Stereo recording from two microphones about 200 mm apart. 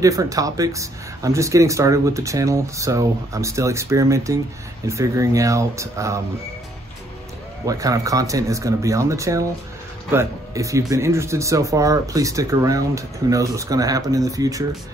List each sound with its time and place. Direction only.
0.0 s speech: 15° right (ahead or behind)
7.6 s speech: 15° right (ahead or behind)